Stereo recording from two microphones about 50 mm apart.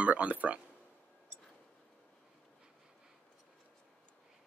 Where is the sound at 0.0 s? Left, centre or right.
Right.